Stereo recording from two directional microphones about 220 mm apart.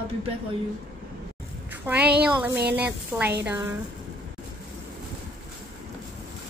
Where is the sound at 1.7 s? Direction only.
5° right (ahead or behind).